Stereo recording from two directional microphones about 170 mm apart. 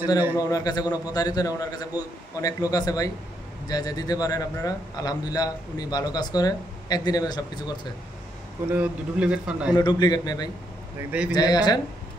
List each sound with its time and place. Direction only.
0.4 s a man's voice: 20° left (ahead or behind)
8.7 s a man's voice: 5° right (ahead or behind)
9.8 s a man's voice: 25° left (ahead or behind)